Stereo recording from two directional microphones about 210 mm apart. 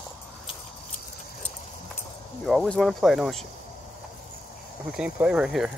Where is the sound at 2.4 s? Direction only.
5° left (ahead or behind).